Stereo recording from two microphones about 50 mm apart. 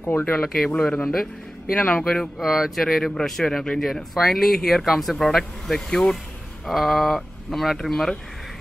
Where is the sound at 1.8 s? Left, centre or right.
Centre.